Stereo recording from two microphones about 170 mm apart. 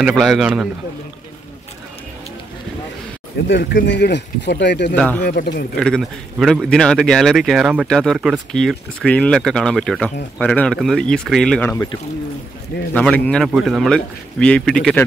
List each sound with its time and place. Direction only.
0.0 s a man's voice: centre (ahead or behind)
3.4 s speech: 90° left
4.9 s speech: 5° left (ahead or behind)
5.3 s a man's voice: 70° left (ahead or behind)
5.8 s a man's voice: centre (ahead or behind)
11.7 s speech: 20° left (ahead or behind)
12.9 s a man's voice: 5° left (ahead or behind)